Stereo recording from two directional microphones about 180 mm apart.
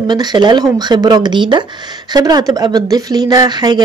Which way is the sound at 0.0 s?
25° right (ahead or behind).